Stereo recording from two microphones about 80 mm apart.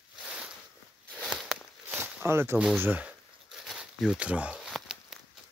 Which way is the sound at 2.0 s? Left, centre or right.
Right.